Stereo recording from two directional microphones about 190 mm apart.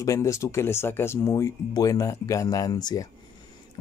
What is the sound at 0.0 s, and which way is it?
Speech, 15° left (ahead or behind).